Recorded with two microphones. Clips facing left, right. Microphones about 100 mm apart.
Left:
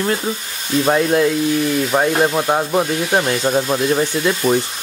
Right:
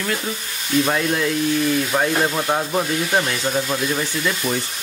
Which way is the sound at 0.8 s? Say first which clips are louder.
Left 6 dB; 25° left (ahead or behind).